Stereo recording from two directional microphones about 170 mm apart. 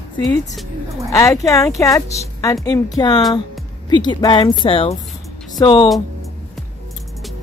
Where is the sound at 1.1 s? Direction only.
20° left (ahead or behind).